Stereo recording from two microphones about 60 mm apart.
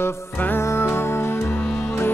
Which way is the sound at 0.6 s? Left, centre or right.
Left.